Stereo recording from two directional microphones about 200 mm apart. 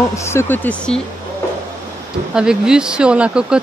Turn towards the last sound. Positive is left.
turn(degrees=-5)  # may be behind; listen again after turning